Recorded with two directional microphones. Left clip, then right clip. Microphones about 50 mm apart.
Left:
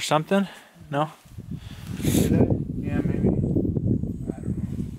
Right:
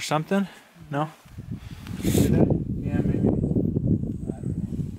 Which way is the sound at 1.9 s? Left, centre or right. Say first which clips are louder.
Even; centre.